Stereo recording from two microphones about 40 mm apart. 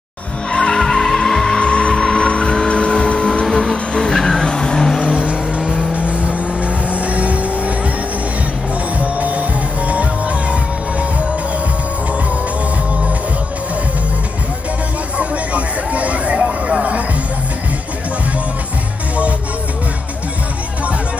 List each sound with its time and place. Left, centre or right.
0.5 s vehicle: left
0.7 s music: centre
2.2 s vehicle: left
3.9 s vehicle: centre
5.0 s vehicle: right
8.9 s music: right
15.1 s a sound: right